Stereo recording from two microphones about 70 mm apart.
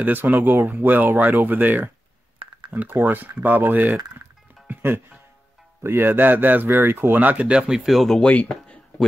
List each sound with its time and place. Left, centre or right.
0.0 s speech: right; by 8.2 s centre
8.2 s speech: centre